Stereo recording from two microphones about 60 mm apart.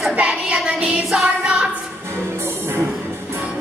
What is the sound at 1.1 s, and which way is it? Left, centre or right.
Music, centre.